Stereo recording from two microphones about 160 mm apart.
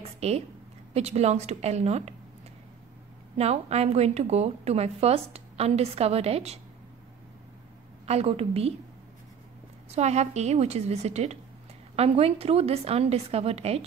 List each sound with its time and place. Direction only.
0.2 s a woman's voice: 40° right (ahead or behind)
3.3 s a woman's voice: 40° right (ahead or behind)
8.1 s a woman's voice: 40° right (ahead or behind)
9.8 s a woman's voice: 45° right (ahead or behind)